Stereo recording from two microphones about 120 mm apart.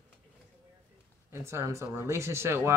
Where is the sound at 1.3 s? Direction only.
20° right (ahead or behind).